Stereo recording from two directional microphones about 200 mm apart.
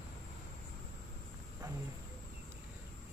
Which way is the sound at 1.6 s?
20° right (ahead or behind).